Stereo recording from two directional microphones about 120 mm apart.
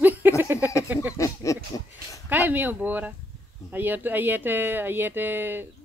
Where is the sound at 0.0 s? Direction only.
15° right (ahead or behind).